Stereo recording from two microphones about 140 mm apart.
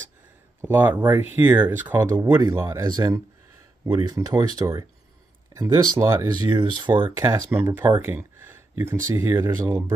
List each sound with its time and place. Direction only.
0.6 s speech: 15° right (ahead or behind)
6.5 s speech: 35° right (ahead or behind)
7.2 s speech: 20° right (ahead or behind)